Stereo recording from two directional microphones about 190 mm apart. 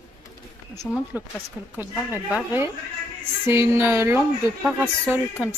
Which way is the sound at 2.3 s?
10° right (ahead or behind).